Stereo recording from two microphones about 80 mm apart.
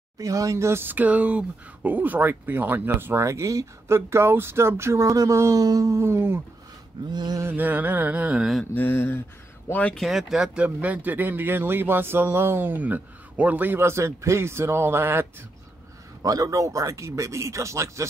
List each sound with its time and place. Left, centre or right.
0.2 s speech: right
7.1 s a sound: right
7.4 s speech: right
8.7 s speech: left
9.7 s speech: centre
9.9 s speech: centre; by 15.2 s right
16.2 s speech: right